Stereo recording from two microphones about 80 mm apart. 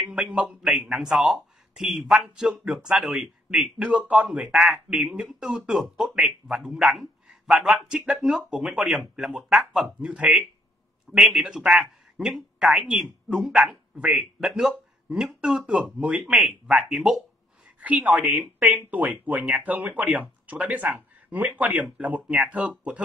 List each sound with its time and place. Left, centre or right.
0.1 s a man's voice: centre
0.5 s a man's voice: centre
7.2 s a sound: centre
7.6 s speech: centre
17.7 s a man's voice: centre